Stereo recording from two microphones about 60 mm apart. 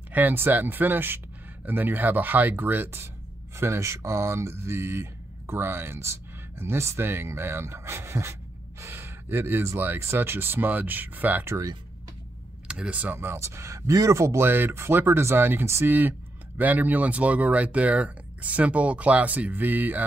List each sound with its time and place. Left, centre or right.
0.1 s speech: right
12.6 s speech: centre
13.0 s speech: right
14.4 s speech: right
15.9 s speech: right